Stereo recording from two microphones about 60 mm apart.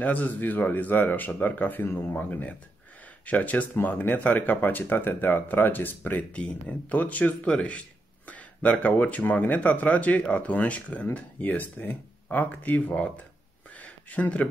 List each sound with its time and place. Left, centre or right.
0.0 s speech: left
6.3 s speech: left
13.7 s a sound: left